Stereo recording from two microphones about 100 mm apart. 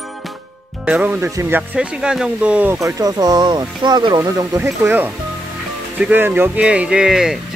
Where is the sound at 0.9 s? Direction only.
10° right (ahead or behind).